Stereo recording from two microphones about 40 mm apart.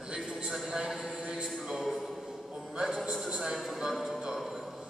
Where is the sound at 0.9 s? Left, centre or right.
Centre.